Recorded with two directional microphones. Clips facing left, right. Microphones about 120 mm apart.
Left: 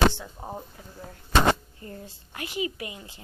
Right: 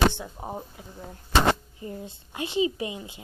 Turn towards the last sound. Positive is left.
turn(degrees=-20)  # may be behind; listen again after turning